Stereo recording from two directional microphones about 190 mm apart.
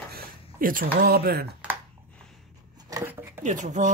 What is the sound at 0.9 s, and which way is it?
Speech, 55° right (ahead or behind).